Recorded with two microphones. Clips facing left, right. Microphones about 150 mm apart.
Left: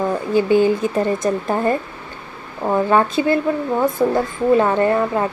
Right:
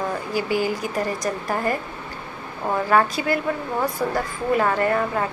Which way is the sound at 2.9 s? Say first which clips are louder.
Left 2 dB; 25° left (ahead or behind).